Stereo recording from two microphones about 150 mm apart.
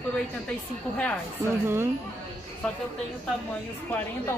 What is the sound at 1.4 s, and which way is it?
Speech, 15° right (ahead or behind).